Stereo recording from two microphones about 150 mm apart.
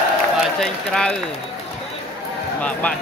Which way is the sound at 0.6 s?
5° left (ahead or behind).